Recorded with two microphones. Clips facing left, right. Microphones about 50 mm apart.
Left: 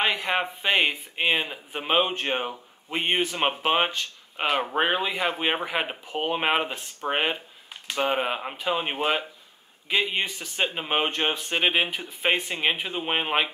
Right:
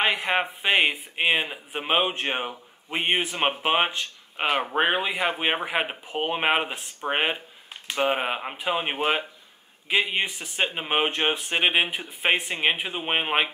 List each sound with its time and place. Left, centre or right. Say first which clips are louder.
0.0 s speech: right 1 dB; centre